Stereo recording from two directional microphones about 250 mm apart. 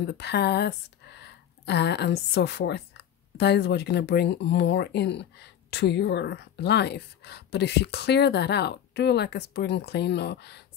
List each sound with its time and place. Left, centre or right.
0.0 s speech: left